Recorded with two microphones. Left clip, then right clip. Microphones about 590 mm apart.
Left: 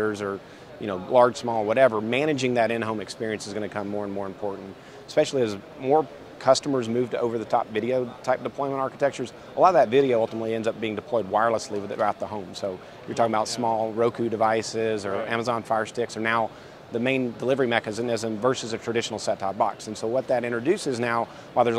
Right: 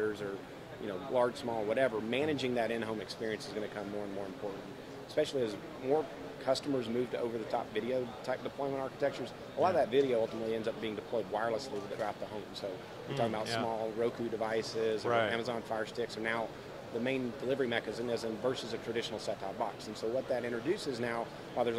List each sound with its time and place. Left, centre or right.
0.0 s a man's voice: left
5.1 s speech: left